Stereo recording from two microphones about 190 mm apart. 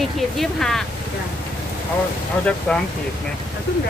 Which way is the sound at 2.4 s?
5° left (ahead or behind).